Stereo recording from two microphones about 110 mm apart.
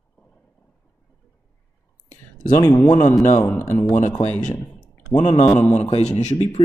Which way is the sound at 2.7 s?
40° left (ahead or behind).